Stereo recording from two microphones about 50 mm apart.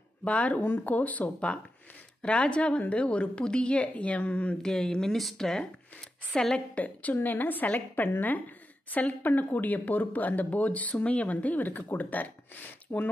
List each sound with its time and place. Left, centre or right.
0.2 s speech: left
0.6 s speech: left
0.8 s a woman's voice: left
4.6 s speech: centre
6.5 s speech: left